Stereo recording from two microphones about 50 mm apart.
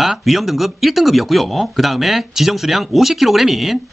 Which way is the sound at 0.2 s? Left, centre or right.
Centre.